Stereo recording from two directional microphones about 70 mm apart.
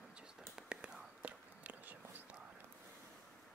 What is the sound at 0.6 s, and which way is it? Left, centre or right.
Whispering, centre.